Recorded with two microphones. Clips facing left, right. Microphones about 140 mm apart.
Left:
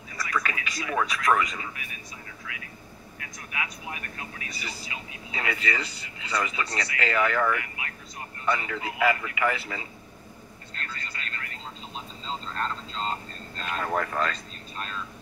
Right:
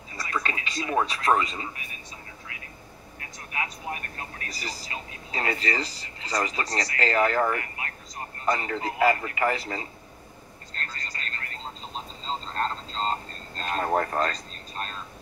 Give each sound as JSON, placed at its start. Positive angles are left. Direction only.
{"t": 0.1, "sound": "speech", "side_deg": -30}
{"t": 3.2, "sound": "speech", "side_deg": -35}
{"t": 10.7, "sound": "vehicle", "side_deg": -35}